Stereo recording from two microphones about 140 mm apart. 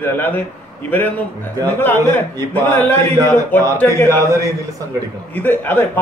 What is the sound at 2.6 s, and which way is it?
A man's voice, 10° left (ahead or behind).